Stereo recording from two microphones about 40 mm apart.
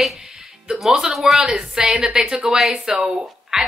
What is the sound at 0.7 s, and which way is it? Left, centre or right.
Music, right.